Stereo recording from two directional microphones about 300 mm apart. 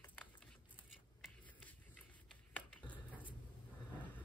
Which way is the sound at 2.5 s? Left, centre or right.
Centre.